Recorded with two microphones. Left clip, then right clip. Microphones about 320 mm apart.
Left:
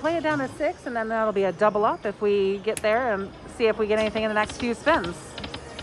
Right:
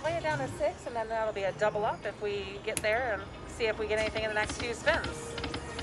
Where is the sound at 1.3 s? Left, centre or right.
Left.